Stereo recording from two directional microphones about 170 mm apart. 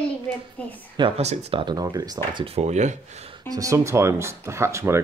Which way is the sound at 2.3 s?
35° right (ahead or behind).